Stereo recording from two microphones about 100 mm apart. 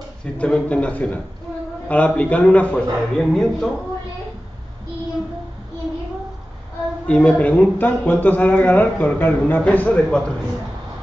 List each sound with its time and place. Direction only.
0.2 s speech: 10° left (ahead or behind)
7.1 s speech: 15° left (ahead or behind)